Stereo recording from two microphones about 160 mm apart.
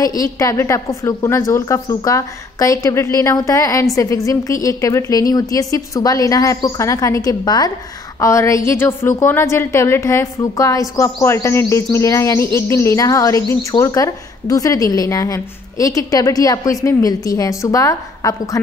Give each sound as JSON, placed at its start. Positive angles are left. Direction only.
{"t": 0.0, "sound": "a woman's voice", "side_deg": 20}